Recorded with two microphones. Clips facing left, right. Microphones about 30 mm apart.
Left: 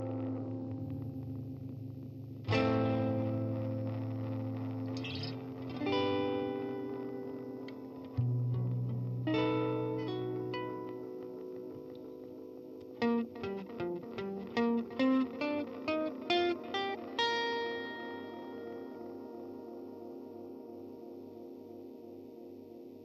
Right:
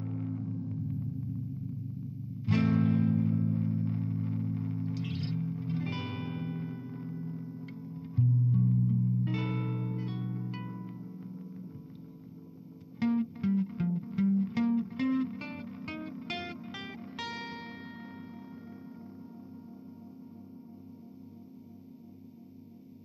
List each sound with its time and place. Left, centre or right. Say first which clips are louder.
0.0 s music: even; left
2.4 s music: right 2 dB; left
4.9 s music: right 4 dB; left
13.0 s music: right 3 dB; left